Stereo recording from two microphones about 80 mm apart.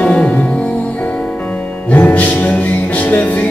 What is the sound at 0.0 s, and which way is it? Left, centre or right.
Music, centre.